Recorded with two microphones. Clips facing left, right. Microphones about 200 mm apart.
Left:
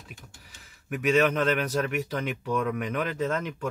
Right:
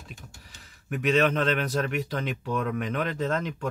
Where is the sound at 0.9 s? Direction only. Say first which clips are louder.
Even; 35° right (ahead or behind).